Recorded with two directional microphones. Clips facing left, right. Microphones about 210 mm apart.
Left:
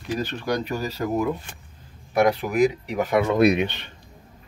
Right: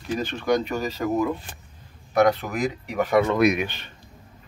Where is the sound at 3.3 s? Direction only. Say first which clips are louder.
Left 2 dB; 30° left (ahead or behind).